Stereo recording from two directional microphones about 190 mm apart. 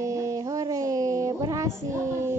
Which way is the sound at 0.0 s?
15° right (ahead or behind).